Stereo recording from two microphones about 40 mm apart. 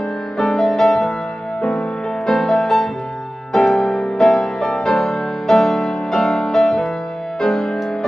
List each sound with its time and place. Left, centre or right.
0.4 s music: centre